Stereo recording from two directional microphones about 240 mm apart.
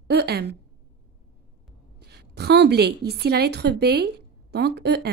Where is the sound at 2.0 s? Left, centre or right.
Right.